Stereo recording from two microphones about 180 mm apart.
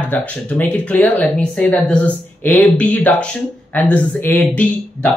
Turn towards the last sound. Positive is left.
turn(degrees=10)  # may be behind; listen again after turning